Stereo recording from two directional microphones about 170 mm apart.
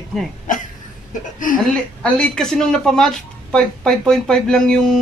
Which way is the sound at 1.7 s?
5° left (ahead or behind).